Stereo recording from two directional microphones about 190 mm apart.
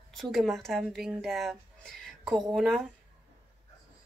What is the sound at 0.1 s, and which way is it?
A woman's voice, centre (ahead or behind).